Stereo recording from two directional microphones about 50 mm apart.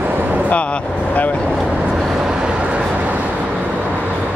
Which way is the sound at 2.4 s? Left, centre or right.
Centre.